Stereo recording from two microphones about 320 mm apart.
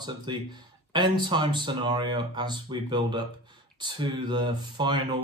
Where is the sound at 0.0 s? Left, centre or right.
Centre.